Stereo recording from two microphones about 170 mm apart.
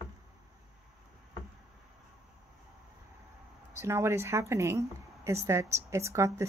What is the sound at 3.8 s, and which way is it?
Speech, 15° right (ahead or behind).